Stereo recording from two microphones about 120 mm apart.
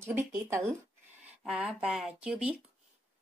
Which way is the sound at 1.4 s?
5° right (ahead or behind).